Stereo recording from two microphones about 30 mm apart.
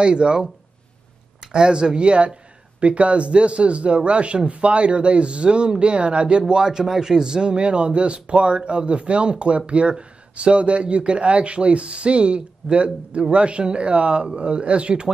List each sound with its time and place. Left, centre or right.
0.0 s speech: right